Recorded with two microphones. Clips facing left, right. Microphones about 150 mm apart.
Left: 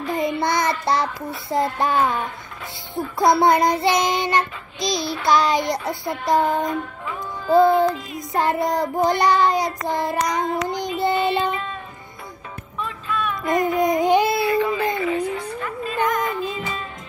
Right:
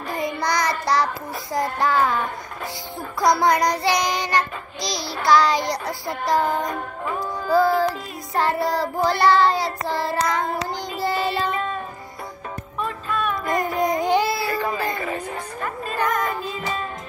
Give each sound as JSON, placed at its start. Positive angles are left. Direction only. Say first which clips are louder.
{"t": 0.4, "sound": "child singing", "louder": "left 2 dB", "side_deg": 25}
{"t": 6.6, "sound": "music", "louder": "left 2 dB", "side_deg": -45}
{"t": 7.4, "sound": "music", "louder": "left 4 dB", "side_deg": 20}
{"t": 8.3, "sound": "child singing", "louder": "left 1 dB", "side_deg": 20}
{"t": 11.5, "sound": "child singing", "louder": "right 3 dB", "side_deg": -45}
{"t": 12.7, "sound": "music", "louder": "even", "side_deg": -45}
{"t": 13.7, "sound": "music", "louder": "left 2 dB", "side_deg": 20}
{"t": 14.6, "sound": "music", "louder": "left 4 dB", "side_deg": -45}